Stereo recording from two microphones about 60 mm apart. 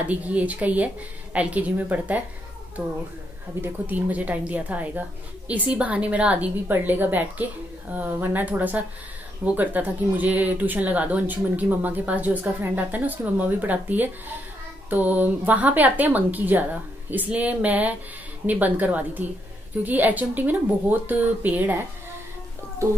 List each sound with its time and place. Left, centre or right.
0.1 s speech: right
3.6 s speech: right